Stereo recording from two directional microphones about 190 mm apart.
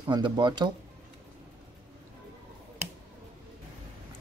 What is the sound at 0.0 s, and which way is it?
Speech, 25° right (ahead or behind).